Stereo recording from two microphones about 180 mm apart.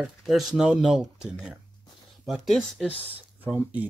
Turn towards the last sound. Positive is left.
turn(degrees=-10)  # may be behind; listen again after turning